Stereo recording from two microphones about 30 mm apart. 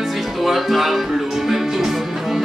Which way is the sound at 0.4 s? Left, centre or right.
Centre.